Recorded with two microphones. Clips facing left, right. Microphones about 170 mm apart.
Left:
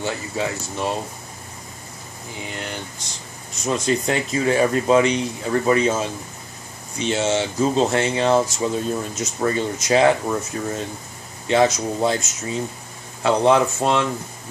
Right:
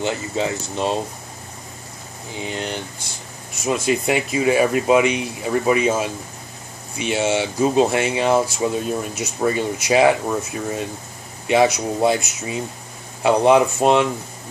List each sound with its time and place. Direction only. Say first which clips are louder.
0.0 s speech: right 3 dB; 20° right (ahead or behind)
3.6 s speech: right 1 dB; 10° right (ahead or behind)